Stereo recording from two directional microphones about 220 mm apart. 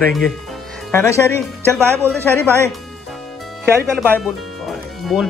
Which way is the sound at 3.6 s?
10° right (ahead or behind).